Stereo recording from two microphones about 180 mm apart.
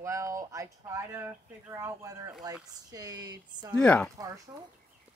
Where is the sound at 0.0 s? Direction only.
15° right (ahead or behind).